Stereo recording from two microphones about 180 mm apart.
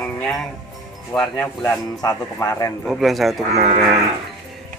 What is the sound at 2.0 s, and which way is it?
Speech, 20° left (ahead or behind).